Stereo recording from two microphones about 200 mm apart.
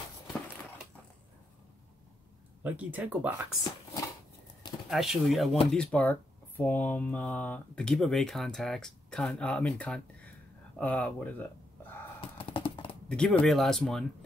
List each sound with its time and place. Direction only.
2.6 s speech: 5° right (ahead or behind)
4.8 s speech: centre (ahead or behind)
12.2 s a sound: 25° left (ahead or behind)
13.1 s speech: 5° left (ahead or behind)